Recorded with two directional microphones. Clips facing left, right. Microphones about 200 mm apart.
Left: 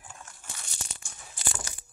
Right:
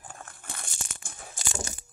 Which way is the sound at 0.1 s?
55° right (ahead or behind).